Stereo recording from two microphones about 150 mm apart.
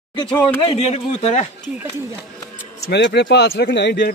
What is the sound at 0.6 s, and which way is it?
Speech, 40° left (ahead or behind).